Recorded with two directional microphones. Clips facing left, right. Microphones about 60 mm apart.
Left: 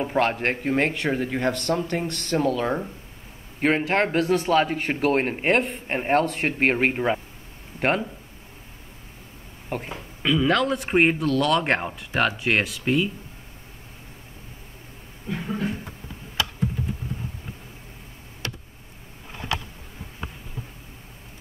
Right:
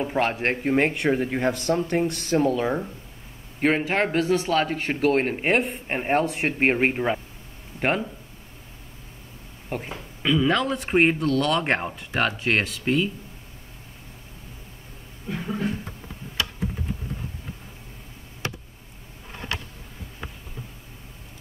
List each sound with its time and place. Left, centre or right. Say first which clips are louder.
0.0 s a man's voice: left 1 dB; centre
0.4 s a man's voice: right 1 dB; centre
6.9 s a man's voice: left 1 dB; centre
9.7 s a man's voice: left 1 dB; centre
18.4 s a sound: right 2 dB; right